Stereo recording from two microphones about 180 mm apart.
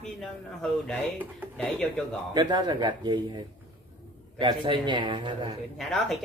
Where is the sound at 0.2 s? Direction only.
5° left (ahead or behind).